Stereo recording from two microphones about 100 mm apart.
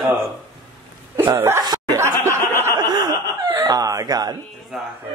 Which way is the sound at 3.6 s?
40° right (ahead or behind).